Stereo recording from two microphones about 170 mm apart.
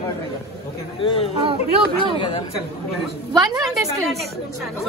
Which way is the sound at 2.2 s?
30° left (ahead or behind).